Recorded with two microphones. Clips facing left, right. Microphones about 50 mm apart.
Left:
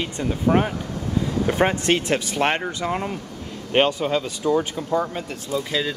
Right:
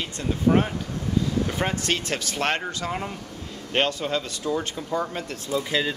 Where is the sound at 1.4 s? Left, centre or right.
Left; by 5.6 s centre.